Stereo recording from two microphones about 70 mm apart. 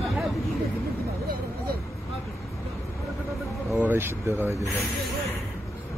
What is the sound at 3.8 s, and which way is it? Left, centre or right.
Speech, right.